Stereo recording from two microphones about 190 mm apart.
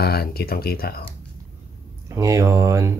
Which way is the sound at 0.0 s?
55° left (ahead or behind).